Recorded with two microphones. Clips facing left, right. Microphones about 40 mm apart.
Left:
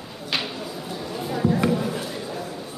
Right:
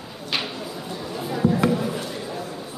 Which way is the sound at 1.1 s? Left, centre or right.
Centre.